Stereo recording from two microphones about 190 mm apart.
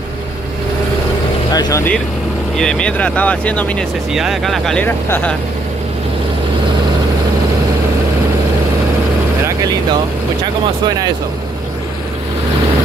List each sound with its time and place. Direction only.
1.5 s speech: 20° left (ahead or behind)
2.5 s speech: 5° left (ahead or behind)